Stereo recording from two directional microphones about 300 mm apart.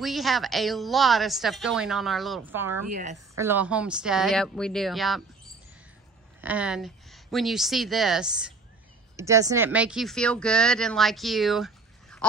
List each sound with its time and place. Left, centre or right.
0.0 s speech: centre
2.9 s a woman's voice: right
3.3 s speech: centre
6.4 s speech: centre